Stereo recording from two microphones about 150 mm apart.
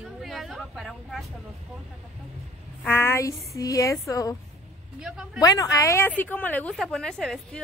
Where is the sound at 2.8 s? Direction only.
15° left (ahead or behind).